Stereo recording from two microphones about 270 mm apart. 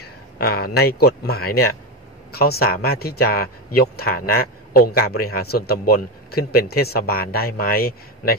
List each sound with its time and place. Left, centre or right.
0.0 s speech: left